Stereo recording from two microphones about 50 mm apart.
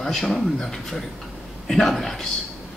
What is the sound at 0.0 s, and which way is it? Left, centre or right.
Speech, centre.